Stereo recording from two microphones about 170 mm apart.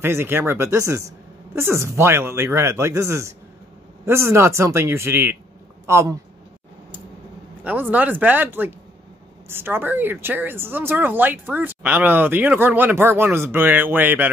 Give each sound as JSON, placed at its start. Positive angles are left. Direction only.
{"t": 0.0, "sound": "speech", "side_deg": -15}
{"t": 7.6, "sound": "speech", "side_deg": -10}